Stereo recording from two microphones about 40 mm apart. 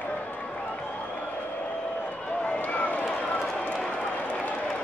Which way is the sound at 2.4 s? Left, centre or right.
Left.